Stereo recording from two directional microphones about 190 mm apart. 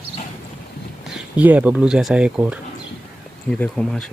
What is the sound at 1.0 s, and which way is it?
Speech, 5° right (ahead or behind).